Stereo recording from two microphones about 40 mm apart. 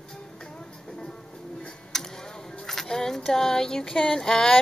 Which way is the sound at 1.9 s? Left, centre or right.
Centre.